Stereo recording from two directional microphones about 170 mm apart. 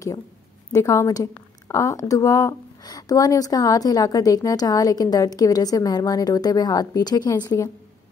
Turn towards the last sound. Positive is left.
turn(degrees=25)  # may be behind; listen again after turning